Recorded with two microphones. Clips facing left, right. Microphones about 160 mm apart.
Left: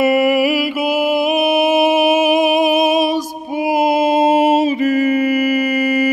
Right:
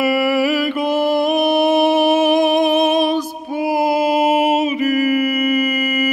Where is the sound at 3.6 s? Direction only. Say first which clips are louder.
Left 2 dB; 20° left (ahead or behind).